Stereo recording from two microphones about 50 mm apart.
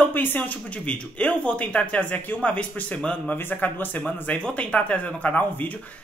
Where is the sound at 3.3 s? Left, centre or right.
Left.